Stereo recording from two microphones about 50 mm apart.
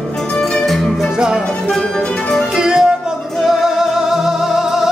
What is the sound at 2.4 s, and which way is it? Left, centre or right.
Music, centre.